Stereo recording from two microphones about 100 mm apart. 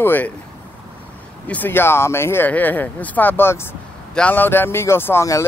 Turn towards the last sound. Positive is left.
turn(degrees=30)  # may be behind; listen again after turning